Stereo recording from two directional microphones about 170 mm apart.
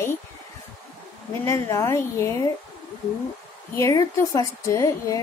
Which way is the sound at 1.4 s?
20° left (ahead or behind).